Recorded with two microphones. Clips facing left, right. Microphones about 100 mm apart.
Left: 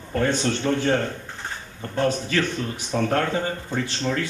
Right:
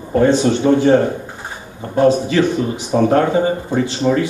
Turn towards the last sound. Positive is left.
turn(degrees=-15)  # may be behind; listen again after turning